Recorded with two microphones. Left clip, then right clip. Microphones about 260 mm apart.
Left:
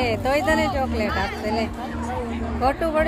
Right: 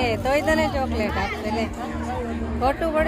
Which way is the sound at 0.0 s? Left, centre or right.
Centre.